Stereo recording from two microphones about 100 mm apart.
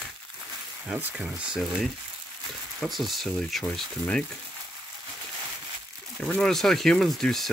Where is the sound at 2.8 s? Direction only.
Centre (ahead or behind).